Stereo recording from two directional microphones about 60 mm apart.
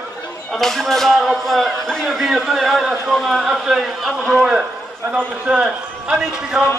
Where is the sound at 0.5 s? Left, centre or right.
Centre.